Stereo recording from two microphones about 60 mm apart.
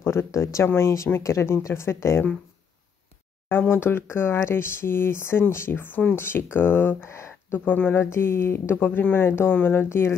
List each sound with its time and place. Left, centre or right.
0.0 s speech: left
0.3 s speech: left
0.7 s speech: left
3.7 s speech: left
7.5 s speech: left